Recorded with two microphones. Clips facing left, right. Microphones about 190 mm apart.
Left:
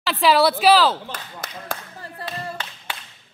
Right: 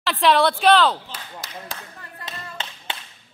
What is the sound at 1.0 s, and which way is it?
Speech, 50° left (ahead or behind).